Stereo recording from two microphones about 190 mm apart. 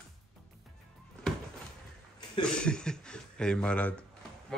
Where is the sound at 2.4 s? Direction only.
5° left (ahead or behind).